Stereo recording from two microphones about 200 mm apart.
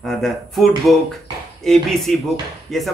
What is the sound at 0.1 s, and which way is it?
Speech, centre (ahead or behind).